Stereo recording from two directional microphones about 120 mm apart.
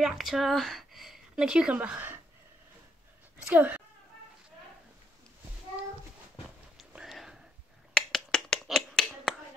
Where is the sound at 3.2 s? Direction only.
15° right (ahead or behind).